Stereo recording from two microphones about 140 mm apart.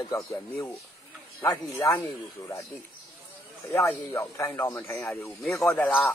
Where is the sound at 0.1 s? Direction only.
25° left (ahead or behind).